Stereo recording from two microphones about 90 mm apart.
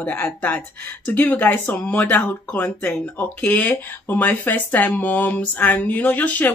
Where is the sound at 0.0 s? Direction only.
20° left (ahead or behind).